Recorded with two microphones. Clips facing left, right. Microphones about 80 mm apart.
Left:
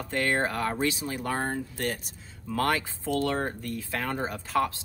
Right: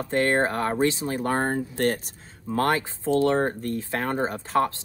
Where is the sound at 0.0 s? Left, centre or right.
Right.